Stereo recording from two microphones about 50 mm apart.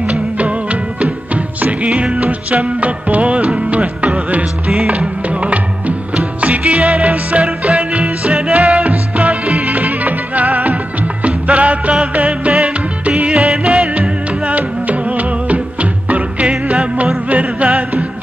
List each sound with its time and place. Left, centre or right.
0.0 s music: right
8.8 s music: right
13.3 s music: centre
13.7 s music: right